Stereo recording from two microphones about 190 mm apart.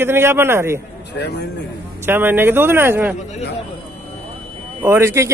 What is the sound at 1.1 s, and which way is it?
Speech, 60° left (ahead or behind).